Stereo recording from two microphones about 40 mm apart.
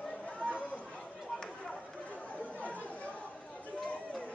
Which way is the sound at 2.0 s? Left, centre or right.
Left.